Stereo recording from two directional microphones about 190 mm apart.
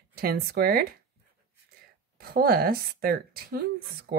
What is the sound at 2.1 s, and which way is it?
Speech, 50° right (ahead or behind).